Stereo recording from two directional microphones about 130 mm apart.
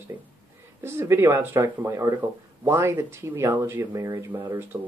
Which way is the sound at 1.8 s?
35° right (ahead or behind).